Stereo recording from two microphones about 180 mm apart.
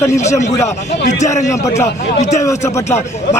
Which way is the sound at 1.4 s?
15° left (ahead or behind).